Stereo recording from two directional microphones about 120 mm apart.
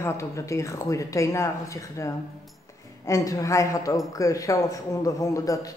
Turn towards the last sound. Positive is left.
turn(degrees=30)  # may be behind; listen again after turning